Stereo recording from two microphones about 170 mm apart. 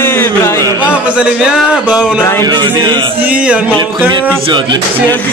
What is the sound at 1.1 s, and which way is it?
Speech, 5° right (ahead or behind).